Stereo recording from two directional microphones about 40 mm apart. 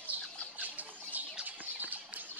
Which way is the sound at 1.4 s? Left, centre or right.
Right.